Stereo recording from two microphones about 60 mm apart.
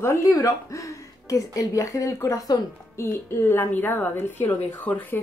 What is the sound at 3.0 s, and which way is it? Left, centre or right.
A woman's voice, left.